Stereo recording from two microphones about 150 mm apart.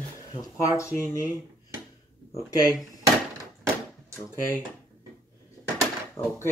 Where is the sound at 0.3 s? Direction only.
20° left (ahead or behind).